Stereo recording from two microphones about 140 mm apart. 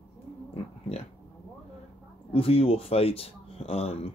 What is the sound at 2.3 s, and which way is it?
Speech, 45° left (ahead or behind).